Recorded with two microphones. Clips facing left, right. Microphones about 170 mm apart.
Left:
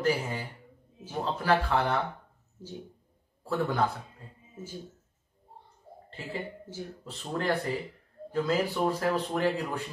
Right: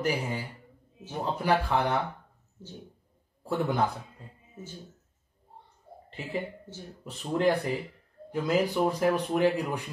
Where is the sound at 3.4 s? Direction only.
15° right (ahead or behind).